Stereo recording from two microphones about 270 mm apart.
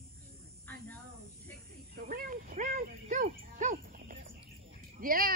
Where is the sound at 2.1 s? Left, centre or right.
Right.